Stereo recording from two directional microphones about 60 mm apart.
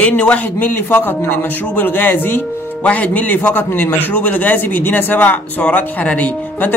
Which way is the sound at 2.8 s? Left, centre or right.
Left.